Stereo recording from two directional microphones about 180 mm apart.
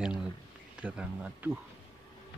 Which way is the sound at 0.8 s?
10° right (ahead or behind).